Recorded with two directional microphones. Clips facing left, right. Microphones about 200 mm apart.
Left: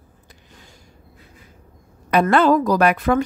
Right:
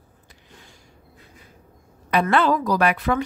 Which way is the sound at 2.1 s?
45° left (ahead or behind).